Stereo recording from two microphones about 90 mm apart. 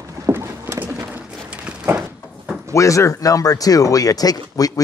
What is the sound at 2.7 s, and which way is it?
Speech, 35° left (ahead or behind).